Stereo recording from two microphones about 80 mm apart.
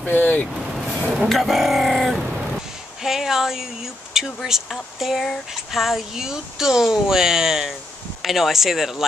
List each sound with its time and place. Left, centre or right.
0.0 s speech: left
0.7 s vehicle: centre
1.0 s a sound: centre
1.3 s speech: centre